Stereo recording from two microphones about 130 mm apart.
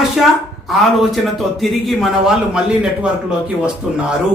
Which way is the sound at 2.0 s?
5° right (ahead or behind).